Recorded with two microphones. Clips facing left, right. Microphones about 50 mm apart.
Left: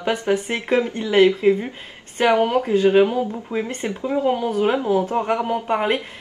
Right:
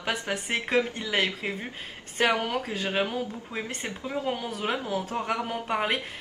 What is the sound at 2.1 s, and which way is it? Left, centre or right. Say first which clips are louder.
Speech: left 8 dB; left.